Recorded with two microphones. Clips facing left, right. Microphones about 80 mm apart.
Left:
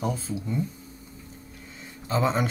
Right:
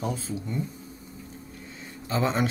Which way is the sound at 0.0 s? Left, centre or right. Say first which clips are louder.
Left 1 dB; centre.